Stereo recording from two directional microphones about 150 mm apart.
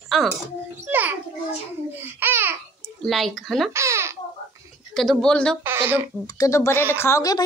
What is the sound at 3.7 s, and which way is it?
Speech, 20° right (ahead or behind).